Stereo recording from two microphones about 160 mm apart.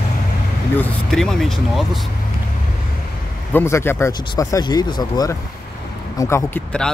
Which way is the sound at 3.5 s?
15° left (ahead or behind).